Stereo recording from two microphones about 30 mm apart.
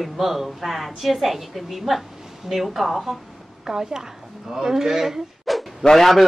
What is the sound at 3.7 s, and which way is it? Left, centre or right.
A woman's voice, centre.